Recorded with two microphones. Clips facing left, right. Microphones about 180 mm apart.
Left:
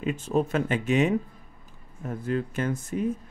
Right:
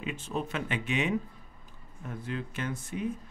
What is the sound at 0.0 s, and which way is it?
Speech, 45° left (ahead or behind).